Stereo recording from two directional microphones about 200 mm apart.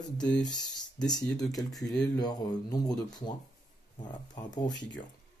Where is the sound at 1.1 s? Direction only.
20° left (ahead or behind).